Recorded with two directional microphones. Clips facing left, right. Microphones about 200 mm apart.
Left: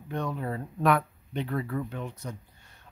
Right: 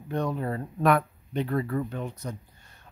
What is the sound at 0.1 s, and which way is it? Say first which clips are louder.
Speech: right 3 dB; 40° right (ahead or behind).